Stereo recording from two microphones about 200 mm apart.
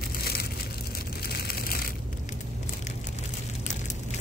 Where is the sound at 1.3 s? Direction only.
50° left (ahead or behind).